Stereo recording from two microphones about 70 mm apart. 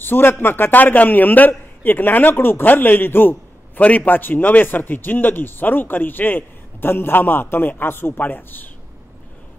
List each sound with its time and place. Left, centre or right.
0.0 s a man's voice: left